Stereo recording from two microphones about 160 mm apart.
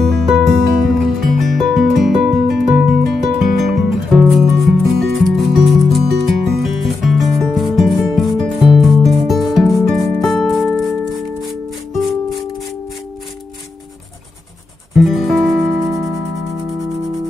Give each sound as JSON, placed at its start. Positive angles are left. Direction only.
{"t": 0.0, "sound": "music", "side_deg": 0}
{"t": 15.0, "sound": "music", "side_deg": 0}